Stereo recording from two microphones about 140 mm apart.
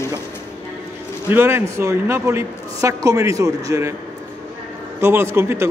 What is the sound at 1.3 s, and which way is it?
A man's voice, 15° right (ahead or behind).